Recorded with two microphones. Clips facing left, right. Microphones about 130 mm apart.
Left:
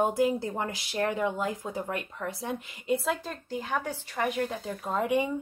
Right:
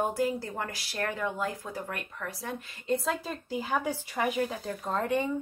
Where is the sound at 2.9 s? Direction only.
Centre (ahead or behind).